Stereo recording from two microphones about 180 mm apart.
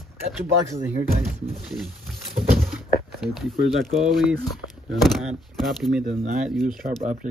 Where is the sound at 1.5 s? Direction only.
Centre (ahead or behind).